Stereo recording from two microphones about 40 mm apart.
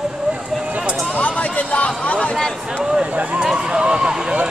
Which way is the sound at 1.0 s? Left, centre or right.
Left.